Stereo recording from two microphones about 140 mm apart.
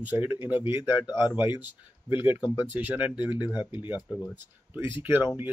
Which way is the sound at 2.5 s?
10° right (ahead or behind).